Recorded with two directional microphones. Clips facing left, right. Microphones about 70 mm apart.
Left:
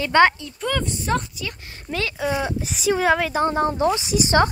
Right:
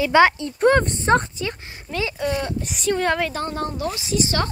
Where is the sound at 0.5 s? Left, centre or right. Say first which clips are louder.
Right 8 dB; right.